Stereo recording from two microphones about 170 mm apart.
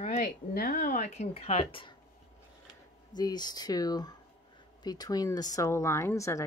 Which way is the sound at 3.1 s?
25° left (ahead or behind).